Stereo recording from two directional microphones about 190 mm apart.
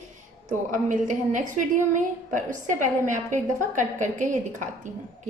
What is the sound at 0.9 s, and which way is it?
A woman's voice, 40° right (ahead or behind).